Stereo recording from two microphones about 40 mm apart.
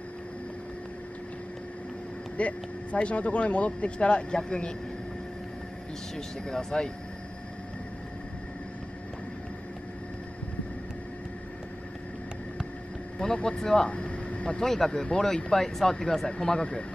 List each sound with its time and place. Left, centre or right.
2.3 s speech: left
6.1 s speech: centre
13.2 s speech: centre
13.8 s vehicle: left
14.6 s speech: centre; by 16.8 s left